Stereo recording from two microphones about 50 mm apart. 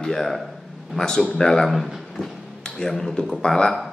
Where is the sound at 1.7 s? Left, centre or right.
Centre.